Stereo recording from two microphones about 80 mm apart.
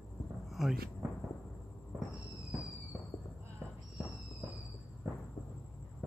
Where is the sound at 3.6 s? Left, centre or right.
Centre.